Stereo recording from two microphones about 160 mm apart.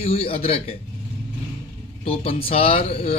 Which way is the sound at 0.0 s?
35° left (ahead or behind).